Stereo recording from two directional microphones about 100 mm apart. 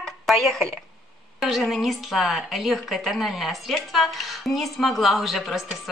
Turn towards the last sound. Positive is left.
turn(degrees=0)  # may be behind; listen again after turning